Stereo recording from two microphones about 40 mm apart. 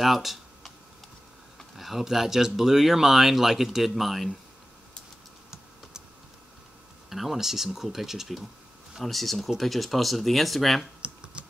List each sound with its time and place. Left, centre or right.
0.0 s computer keyboard: centre
1.8 s speech: centre
7.1 s speech: centre
11.4 s typing: right